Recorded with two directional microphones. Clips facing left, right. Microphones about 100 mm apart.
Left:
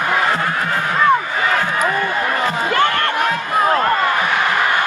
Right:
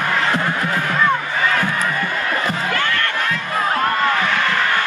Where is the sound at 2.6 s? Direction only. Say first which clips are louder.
Left 5 dB; 25° left (ahead or behind).